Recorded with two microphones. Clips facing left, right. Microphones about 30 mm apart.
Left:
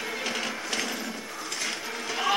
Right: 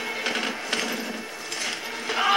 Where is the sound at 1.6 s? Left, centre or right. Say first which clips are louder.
Right 3 dB; right.